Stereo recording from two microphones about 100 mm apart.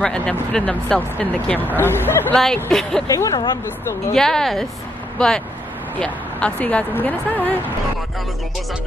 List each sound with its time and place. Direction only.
0.0 s speech: 10° left (ahead or behind)
2.3 s speech: 5° left (ahead or behind)
3.1 s speech: 35° left (ahead or behind)
4.1 s speech: 5° left (ahead or behind)
5.9 s speech: 15° left (ahead or behind)